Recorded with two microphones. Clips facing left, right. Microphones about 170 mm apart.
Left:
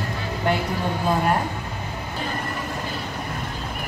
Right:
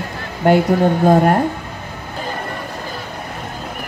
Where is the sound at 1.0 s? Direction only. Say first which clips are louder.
Right 7 dB; 50° right (ahead or behind).